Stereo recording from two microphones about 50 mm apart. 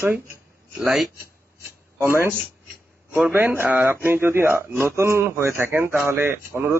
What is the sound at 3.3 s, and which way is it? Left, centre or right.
A man's voice, right.